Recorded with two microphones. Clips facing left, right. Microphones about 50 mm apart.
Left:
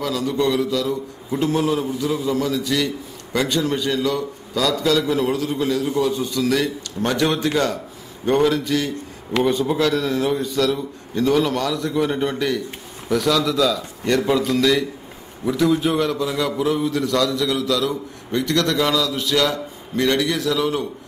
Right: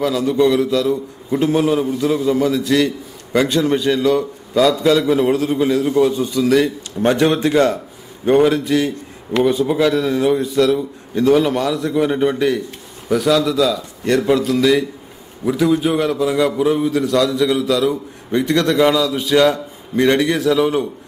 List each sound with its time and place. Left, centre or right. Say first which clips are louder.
0.0 s a man's voice: right 6 dB; right
1.3 s a man's voice: right 4 dB; centre
2.5 s a man's voice: right 6 dB; right
3.3 s a man's voice: right 5 dB; centre
19.5 s a man's voice: right 4 dB; right